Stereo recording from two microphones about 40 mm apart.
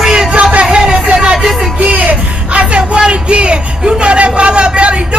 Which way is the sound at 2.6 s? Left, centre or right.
Right.